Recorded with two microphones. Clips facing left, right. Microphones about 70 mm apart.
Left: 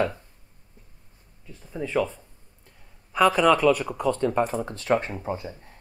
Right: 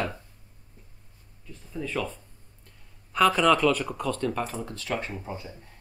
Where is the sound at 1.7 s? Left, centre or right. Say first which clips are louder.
Left 5 dB; centre.